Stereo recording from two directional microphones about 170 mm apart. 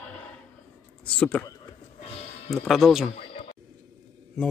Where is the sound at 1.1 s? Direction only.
5° left (ahead or behind).